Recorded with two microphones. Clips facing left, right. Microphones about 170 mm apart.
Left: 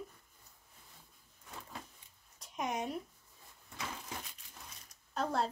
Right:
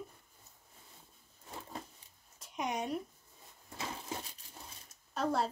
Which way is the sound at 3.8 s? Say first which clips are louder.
Right 3 dB; 25° right (ahead or behind).